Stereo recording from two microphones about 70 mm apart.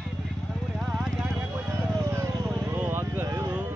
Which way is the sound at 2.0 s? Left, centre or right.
Right.